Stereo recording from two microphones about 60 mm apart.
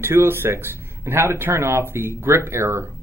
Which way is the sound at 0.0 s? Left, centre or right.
Right.